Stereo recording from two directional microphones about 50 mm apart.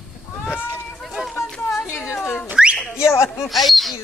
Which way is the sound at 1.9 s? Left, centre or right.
Left.